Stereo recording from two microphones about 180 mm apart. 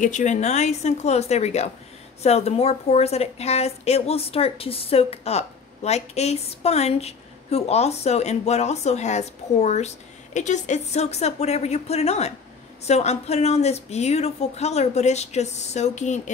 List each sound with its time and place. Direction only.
0.0 s speech: 40° left (ahead or behind)